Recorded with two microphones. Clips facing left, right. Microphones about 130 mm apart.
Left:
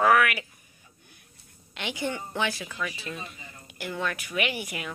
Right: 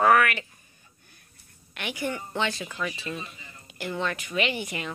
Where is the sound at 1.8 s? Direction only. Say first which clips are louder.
Even; 20° left (ahead or behind).